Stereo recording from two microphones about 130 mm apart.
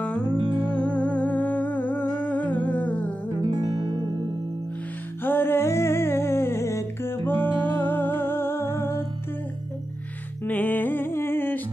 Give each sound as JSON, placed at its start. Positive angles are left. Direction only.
{"t": 0.3, "sound": "music", "side_deg": -40}
{"t": 0.7, "sound": "humming", "side_deg": 10}
{"t": 3.4, "sound": "music", "side_deg": -35}
{"t": 5.2, "sound": "music", "side_deg": 15}
{"t": 10.4, "sound": "music", "side_deg": 15}